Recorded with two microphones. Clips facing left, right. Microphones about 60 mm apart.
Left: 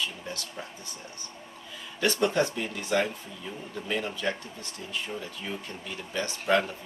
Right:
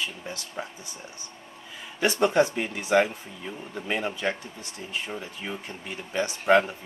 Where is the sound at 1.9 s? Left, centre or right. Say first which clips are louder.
Right 4 dB; right.